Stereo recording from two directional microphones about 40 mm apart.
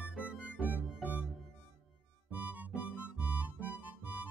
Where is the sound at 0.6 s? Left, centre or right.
Right.